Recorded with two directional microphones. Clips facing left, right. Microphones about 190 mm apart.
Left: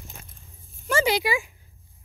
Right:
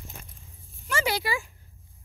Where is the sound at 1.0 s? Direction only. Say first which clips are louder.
Left 5 dB; 15° left (ahead or behind).